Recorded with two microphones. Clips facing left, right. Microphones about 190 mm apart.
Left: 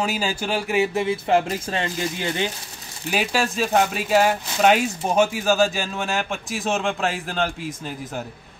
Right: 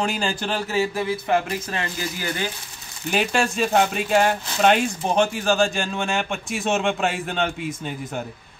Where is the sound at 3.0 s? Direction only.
5° left (ahead or behind).